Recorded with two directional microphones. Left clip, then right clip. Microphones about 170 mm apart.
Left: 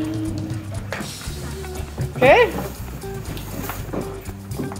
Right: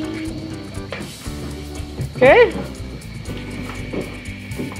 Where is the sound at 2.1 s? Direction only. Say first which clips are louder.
Right 3 dB; 30° right (ahead or behind).